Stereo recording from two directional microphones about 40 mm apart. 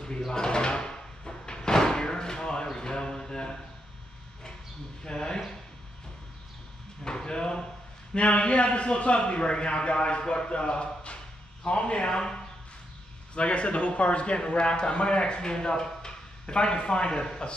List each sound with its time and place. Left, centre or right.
0.3 s door: centre
5.0 s a man's voice: centre
7.1 s a man's voice: centre
13.3 s a man's voice: left